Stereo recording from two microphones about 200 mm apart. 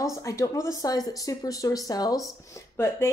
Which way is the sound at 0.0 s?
15° left (ahead or behind).